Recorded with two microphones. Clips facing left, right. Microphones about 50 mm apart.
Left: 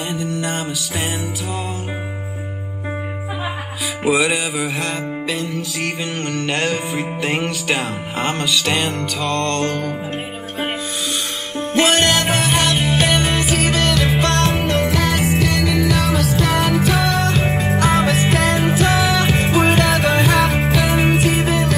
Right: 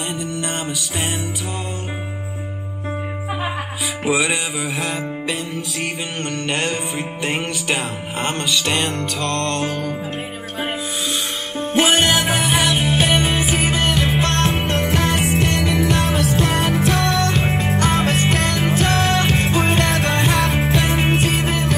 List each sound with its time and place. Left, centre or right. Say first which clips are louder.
0.1 s music: left 2 dB; centre
4.0 s music: left 3 dB; centre
11.5 s music: left 1 dB; centre; by 16.3 s right
16.5 s music: left 2 dB; centre
17.8 s music: left 3 dB; centre